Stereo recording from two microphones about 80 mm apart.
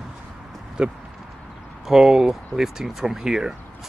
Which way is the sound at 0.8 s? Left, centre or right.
Centre.